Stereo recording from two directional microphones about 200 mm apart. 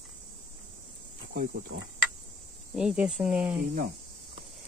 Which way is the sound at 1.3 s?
50° right (ahead or behind).